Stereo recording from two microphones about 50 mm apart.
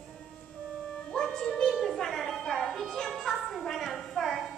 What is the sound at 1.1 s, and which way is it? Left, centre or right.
Music, centre.